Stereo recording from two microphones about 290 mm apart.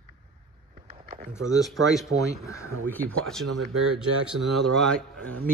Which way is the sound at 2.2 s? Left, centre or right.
Centre.